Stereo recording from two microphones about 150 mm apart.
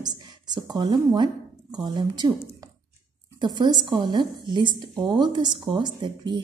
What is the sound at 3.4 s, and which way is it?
A woman's voice, 30° right (ahead or behind).